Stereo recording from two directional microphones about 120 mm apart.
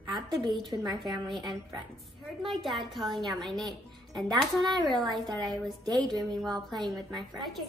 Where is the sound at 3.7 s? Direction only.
35° right (ahead or behind).